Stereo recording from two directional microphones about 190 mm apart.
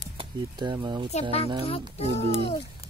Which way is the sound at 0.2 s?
25° right (ahead or behind).